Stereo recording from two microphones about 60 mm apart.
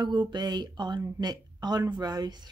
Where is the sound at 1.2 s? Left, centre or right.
Right.